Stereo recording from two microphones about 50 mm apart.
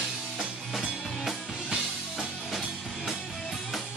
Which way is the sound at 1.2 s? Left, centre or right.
Centre.